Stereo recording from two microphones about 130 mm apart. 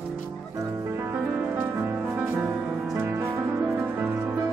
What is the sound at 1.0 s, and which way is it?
Music, 15° right (ahead or behind).